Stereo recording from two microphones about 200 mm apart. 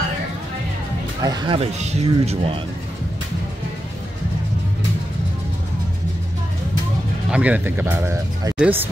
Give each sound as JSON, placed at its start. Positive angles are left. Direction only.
{"t": 1.2, "sound": "speech", "side_deg": -20}
{"t": 7.2, "sound": "speech", "side_deg": -5}